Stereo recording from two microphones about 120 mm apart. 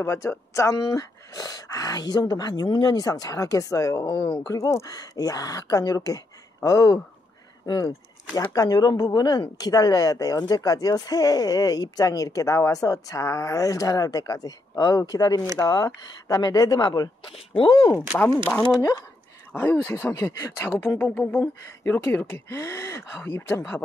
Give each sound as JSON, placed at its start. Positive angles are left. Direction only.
{"t": 0.0, "sound": "speech", "side_deg": 20}
{"t": 19.5, "sound": "speech", "side_deg": 15}